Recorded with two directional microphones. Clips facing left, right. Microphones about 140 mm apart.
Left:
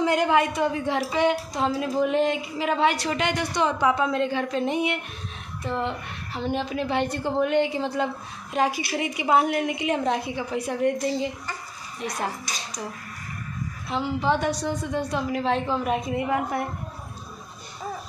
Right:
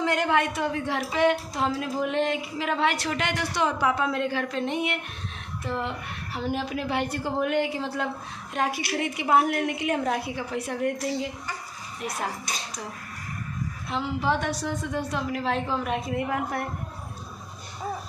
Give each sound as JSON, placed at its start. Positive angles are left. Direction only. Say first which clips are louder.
{"t": 0.0, "sound": "a woman's voice", "louder": "left 3 dB", "side_deg": 5}
{"t": 13.8, "sound": "a woman's voice", "louder": "left 2 dB", "side_deg": 0}